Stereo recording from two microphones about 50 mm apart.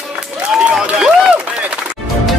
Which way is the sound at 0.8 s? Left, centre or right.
Centre.